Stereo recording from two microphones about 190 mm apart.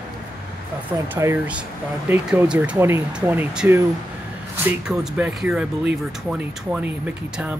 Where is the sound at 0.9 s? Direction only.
10° right (ahead or behind).